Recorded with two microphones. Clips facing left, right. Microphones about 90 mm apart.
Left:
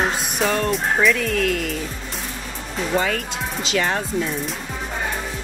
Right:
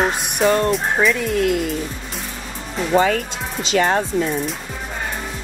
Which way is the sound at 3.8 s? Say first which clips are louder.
Right 6 dB; 40° right (ahead or behind).